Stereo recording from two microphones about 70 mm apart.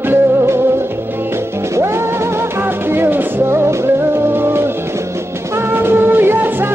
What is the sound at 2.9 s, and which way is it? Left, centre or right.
Music, right.